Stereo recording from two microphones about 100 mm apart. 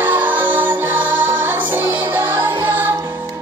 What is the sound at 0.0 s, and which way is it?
Music, 20° right (ahead or behind).